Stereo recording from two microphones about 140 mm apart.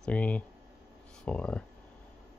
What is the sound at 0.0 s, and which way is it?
Speech, 10° left (ahead or behind).